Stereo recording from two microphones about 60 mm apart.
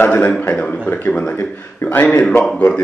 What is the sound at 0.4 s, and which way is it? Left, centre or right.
A man's voice, left.